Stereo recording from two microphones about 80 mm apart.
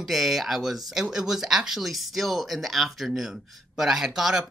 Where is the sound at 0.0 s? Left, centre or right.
Centre.